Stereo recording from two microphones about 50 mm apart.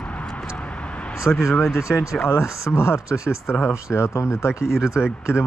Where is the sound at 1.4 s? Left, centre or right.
Left.